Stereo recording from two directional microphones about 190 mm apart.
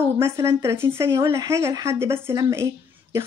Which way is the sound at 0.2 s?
15° right (ahead or behind).